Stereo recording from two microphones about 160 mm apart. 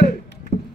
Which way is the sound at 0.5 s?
85° left.